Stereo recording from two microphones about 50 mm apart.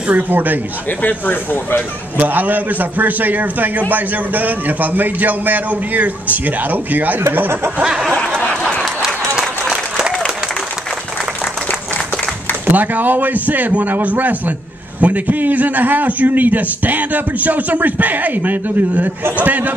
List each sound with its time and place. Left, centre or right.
0.1 s a man's voice: right
0.8 s speech: left
2.1 s a man's voice: right
9.0 s applause: centre
12.7 s a man's voice: right